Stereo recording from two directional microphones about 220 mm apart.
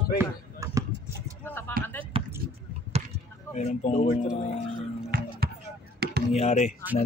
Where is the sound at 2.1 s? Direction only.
25° right (ahead or behind).